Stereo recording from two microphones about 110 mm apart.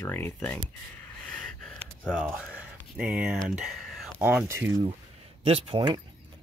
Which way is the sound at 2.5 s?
10° right (ahead or behind).